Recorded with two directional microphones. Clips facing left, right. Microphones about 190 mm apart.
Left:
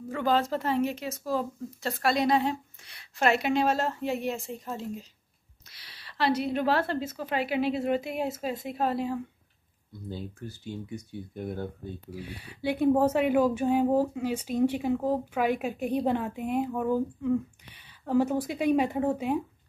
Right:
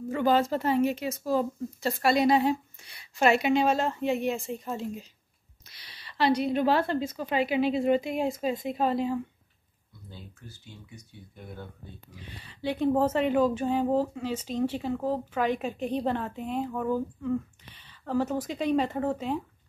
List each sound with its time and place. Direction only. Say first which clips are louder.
0.1 s a woman's voice: right 2 dB; centre (ahead or behind)
6.0 s a woman's voice: right 2 dB; centre (ahead or behind)
11.3 s speech: left 9 dB; 50° left (ahead or behind)
12.1 s speech: left 8 dB; 10° left (ahead or behind)